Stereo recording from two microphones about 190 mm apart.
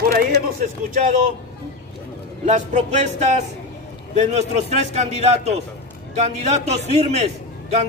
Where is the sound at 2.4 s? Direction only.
35° right (ahead or behind).